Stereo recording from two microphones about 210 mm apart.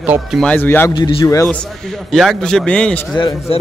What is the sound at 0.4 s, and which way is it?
Speech, 10° left (ahead or behind).